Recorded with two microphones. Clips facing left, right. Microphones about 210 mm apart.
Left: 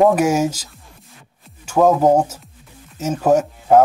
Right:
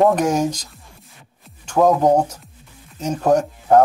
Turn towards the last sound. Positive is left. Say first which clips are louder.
# left 1 dB
turn(degrees=5)  # may be behind; listen again after turning